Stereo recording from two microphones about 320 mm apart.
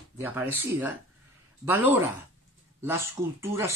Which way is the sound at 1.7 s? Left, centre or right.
Centre.